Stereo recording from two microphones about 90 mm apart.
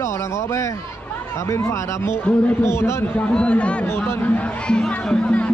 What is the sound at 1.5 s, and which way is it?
A man's voice, 30° left (ahead or behind).